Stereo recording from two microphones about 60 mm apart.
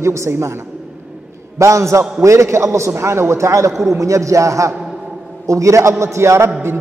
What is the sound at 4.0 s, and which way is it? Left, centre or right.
A man's voice, right.